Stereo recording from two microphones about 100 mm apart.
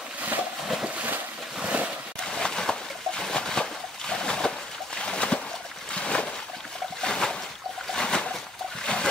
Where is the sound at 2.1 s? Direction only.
5° left (ahead or behind).